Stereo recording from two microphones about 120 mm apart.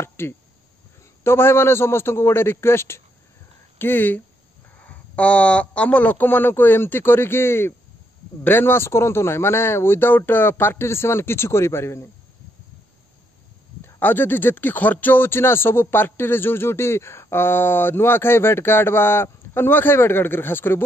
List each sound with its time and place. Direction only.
0.0 s a man's voice: 20° left (ahead or behind)
13.8 s speech: 15° left (ahead or behind)